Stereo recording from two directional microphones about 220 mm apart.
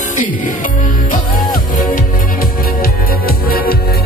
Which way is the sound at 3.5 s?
40° left (ahead or behind).